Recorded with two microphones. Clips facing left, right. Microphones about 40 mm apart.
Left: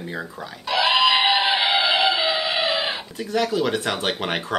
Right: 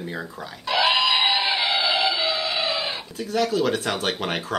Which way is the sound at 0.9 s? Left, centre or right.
Centre.